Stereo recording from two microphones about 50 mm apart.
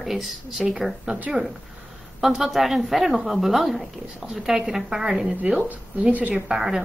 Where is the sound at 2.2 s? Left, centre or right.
Centre.